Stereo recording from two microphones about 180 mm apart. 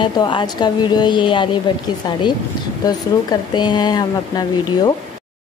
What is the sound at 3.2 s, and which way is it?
A woman's voice, 25° left (ahead or behind).